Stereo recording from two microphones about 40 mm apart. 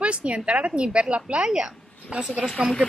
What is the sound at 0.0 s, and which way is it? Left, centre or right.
Speech, right.